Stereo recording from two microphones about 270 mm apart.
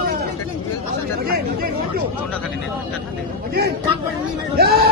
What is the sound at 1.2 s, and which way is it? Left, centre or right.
Chatter, right.